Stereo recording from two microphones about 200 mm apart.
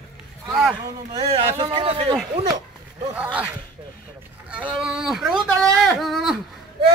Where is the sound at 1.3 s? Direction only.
25° right (ahead or behind).